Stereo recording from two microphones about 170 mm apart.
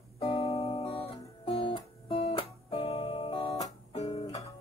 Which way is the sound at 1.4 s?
30° left (ahead or behind).